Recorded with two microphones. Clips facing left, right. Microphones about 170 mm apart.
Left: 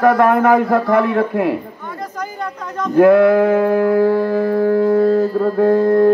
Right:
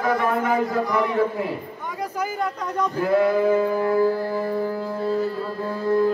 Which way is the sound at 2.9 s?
65° left (ahead or behind).